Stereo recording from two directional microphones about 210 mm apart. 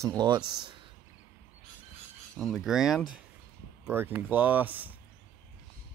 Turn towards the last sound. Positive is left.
turn(degrees=-10)  # may be behind; listen again after turning